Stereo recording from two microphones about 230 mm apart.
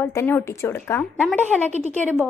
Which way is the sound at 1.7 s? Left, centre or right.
Right.